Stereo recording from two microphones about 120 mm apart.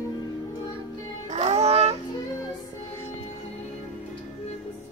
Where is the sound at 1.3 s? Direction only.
65° right (ahead or behind).